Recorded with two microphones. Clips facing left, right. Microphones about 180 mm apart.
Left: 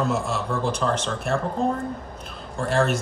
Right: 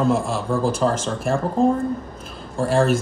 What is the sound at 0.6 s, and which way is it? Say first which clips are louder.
Speech: right 4 dB; 45° right (ahead or behind).